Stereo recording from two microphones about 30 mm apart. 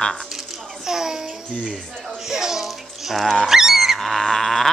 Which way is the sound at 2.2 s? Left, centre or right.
Centre.